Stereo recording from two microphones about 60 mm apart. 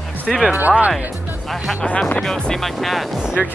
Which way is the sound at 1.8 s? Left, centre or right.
Centre.